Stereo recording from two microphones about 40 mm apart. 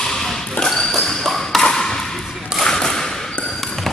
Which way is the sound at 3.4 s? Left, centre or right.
Centre.